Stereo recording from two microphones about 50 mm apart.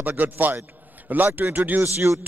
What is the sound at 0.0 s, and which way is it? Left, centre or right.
A man's voice, right.